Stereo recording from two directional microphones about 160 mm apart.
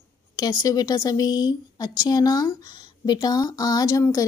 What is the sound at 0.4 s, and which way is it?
Speech, 25° left (ahead or behind).